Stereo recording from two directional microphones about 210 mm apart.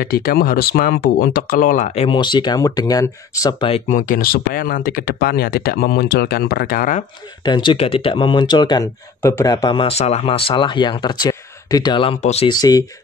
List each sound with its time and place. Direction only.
0.0 s speech: 45° left (ahead or behind); by 3.8 s 25° left (ahead or behind)
3.9 s speech: 40° left (ahead or behind)
7.4 s speech: 20° left (ahead or behind)
12.5 s speech: 15° left (ahead or behind)